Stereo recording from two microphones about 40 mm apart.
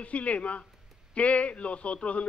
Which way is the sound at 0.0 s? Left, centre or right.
Left.